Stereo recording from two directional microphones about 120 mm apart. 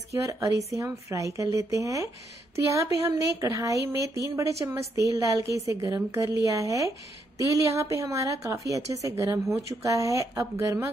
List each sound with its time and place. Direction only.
0.1 s a woman's voice: 25° right (ahead or behind)